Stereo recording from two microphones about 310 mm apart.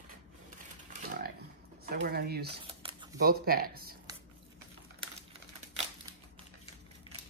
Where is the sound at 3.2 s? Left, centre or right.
Right.